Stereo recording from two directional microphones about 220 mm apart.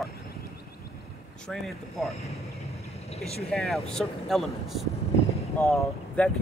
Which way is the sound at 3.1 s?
30° left (ahead or behind).